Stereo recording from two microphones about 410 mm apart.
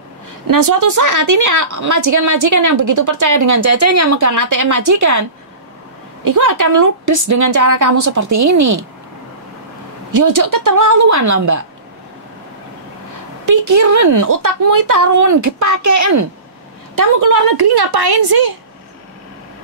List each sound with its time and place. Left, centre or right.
0.5 s speech: right
6.2 s speech: right
10.1 s speech: right
13.5 s a woman's voice: right